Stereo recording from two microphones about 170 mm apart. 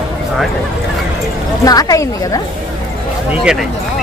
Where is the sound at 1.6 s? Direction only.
20° left (ahead or behind).